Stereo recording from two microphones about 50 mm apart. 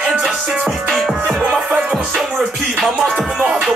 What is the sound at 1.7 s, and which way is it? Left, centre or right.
Music, right.